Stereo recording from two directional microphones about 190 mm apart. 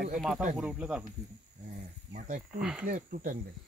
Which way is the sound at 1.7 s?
40° right (ahead or behind).